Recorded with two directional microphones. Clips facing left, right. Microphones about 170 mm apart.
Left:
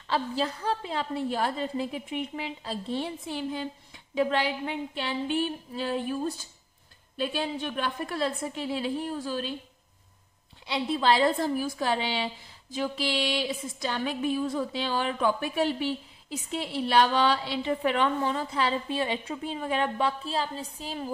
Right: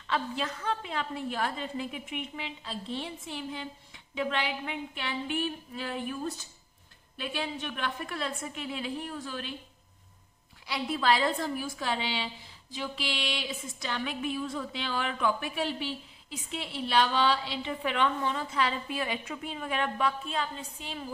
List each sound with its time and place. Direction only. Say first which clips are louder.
0.1 s music: left 4 dB; 35° left (ahead or behind)
10.7 s music: left 3 dB; 30° left (ahead or behind)